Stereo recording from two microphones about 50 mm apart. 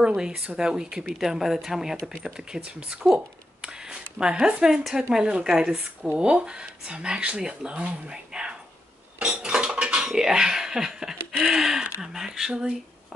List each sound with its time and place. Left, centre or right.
0.0 s speech: centre
3.6 s a sound: centre
5.1 s speech: centre
9.2 s dishes: right
11.4 s speech: centre